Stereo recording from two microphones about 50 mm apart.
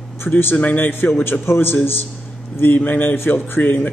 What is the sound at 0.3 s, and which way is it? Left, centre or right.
A man's voice, left.